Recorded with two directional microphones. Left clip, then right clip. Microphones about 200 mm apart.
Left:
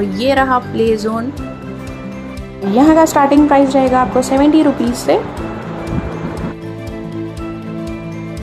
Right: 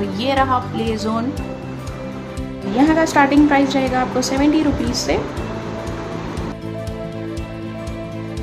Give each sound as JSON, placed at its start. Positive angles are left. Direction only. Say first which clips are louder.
{"t": 0.1, "sound": "a woman's voice", "louder": "left 4 dB", "side_deg": 20}
{"t": 2.7, "sound": "a woman's voice", "louder": "left 6 dB", "side_deg": 25}